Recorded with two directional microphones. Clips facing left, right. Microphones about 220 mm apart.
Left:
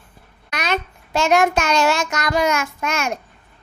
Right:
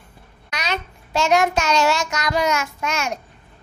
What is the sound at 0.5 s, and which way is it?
Child singing, 55° left (ahead or behind).